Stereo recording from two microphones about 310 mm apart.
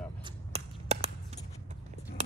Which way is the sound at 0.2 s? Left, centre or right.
Centre.